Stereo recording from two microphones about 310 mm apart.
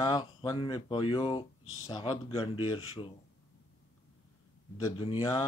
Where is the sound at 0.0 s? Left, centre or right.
Centre.